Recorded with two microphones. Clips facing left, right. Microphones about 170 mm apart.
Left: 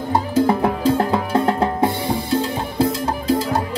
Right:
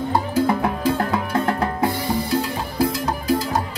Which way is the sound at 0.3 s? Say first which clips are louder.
Left 5 dB; 25° left (ahead or behind).